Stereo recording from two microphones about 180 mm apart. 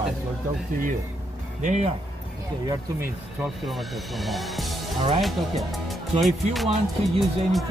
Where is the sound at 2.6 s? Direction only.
20° right (ahead or behind).